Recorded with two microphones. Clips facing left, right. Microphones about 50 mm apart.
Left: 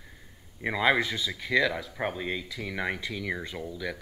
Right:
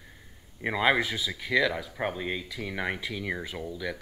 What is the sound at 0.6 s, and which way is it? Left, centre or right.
Speech, centre.